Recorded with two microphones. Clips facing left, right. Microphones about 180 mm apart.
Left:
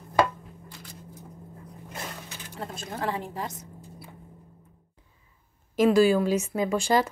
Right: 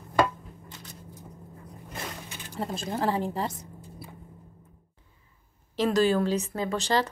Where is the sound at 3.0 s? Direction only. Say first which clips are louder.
Right 3 dB; 30° right (ahead or behind).